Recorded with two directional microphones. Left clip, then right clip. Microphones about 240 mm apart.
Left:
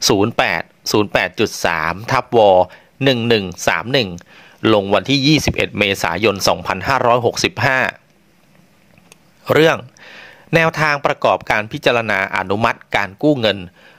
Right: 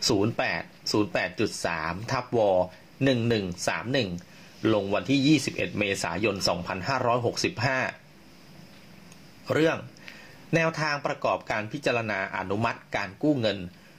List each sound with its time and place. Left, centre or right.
0.0 s speech: left
7.3 s speech: left
9.5 s speech: left
10.5 s speech: left
13.3 s speech: left